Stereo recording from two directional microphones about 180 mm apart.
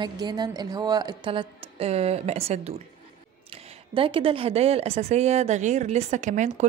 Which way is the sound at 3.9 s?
30° right (ahead or behind).